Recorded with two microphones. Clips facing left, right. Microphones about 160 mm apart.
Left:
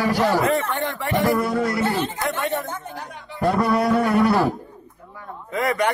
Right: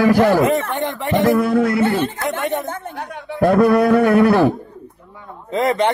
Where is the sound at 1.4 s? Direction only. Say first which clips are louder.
Right 6 dB; 55° right (ahead or behind).